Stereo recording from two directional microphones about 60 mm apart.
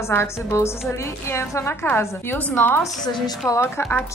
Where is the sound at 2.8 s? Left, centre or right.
Left.